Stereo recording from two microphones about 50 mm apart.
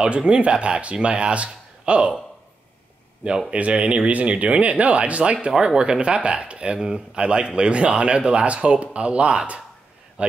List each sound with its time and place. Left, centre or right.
0.0 s speech: right
3.4 s speech: right